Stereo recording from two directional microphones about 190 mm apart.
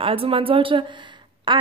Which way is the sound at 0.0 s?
30° right (ahead or behind).